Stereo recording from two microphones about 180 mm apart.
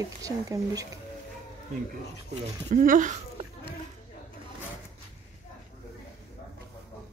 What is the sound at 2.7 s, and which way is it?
Speech, 45° right (ahead or behind).